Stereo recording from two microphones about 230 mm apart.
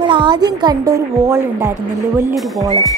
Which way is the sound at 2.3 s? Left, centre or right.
Centre.